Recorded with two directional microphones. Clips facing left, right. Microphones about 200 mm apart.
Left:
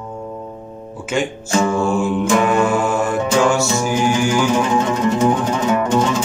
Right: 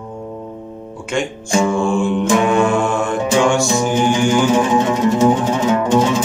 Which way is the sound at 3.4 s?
5° left (ahead or behind).